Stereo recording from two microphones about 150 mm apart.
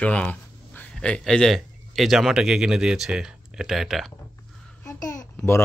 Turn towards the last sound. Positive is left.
turn(degrees=15)  # may be behind; listen again after turning